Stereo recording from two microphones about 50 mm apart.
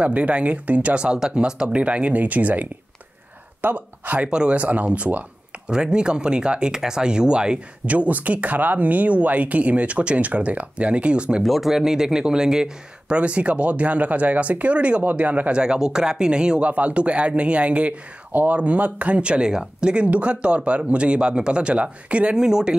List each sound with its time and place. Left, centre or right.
0.0 s speech: right
4.3 s speech: right
5.7 s speech: centre
11.4 s speech: centre
13.2 s speech: right
15.5 s speech: centre